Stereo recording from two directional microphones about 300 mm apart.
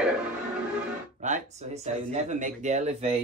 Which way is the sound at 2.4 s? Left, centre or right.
Right.